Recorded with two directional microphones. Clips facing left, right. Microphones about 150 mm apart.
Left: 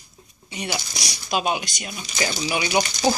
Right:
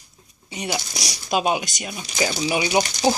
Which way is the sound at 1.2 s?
15° right (ahead or behind).